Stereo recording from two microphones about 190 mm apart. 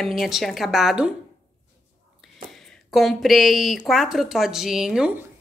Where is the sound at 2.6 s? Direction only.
Centre (ahead or behind).